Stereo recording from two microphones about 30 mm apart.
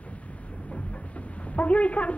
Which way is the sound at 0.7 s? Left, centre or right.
Left.